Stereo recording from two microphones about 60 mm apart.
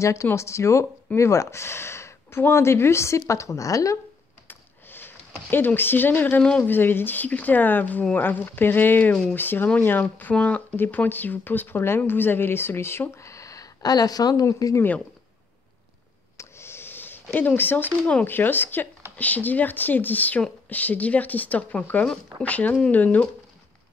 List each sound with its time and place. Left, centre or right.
0.0 s a woman's voice: left
4.5 s a sound: left
5.8 s speech: left
10.8 s speech: left
13.1 s speech: left
16.3 s a sound: left
18.2 s speech: left